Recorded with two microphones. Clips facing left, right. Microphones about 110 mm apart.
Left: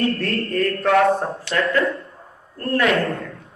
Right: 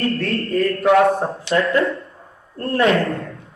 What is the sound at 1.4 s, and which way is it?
Speech, 25° right (ahead or behind).